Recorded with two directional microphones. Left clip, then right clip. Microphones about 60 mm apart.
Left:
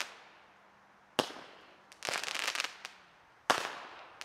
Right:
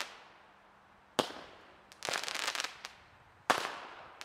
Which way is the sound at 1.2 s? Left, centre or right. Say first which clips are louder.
Even; centre.